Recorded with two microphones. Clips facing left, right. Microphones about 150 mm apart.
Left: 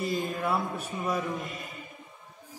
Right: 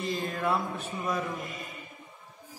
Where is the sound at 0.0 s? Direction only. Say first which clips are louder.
Left 1 dB; 5° left (ahead or behind).